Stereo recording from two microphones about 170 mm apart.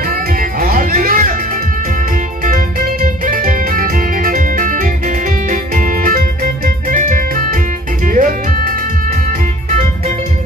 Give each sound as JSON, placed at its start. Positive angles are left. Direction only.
{"t": 0.1, "sound": "music", "side_deg": -60}
{"t": 2.4, "sound": "music", "side_deg": -50}